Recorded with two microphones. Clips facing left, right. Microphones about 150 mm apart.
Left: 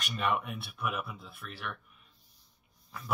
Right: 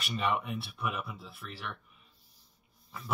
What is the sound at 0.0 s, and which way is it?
Speech, centre (ahead or behind).